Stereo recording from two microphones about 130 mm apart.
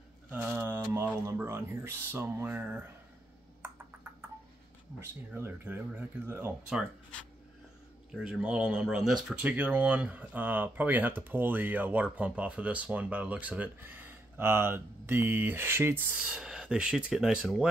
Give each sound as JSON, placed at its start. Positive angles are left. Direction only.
{"t": 0.3, "sound": "speech", "side_deg": -15}
{"t": 3.6, "sound": "a sound", "side_deg": -15}
{"t": 5.0, "sound": "speech", "side_deg": -15}
{"t": 8.2, "sound": "speech", "side_deg": -5}